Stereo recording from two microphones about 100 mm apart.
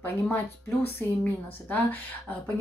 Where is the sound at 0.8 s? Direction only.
15° left (ahead or behind).